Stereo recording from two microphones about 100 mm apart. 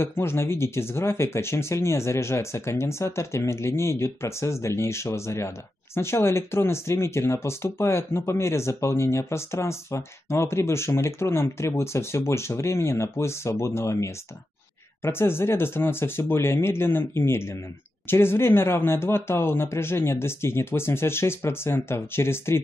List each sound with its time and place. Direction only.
0.0 s speech: 25° left (ahead or behind)